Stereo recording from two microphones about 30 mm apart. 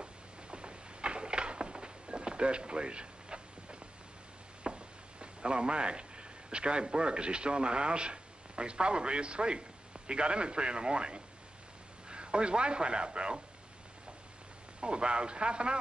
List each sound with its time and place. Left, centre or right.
0.0 s a sound: right
4.6 s a man's voice: right
14.8 s a man's voice: right